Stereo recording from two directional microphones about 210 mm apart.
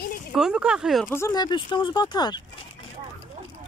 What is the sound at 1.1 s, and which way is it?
Speech, 15° left (ahead or behind).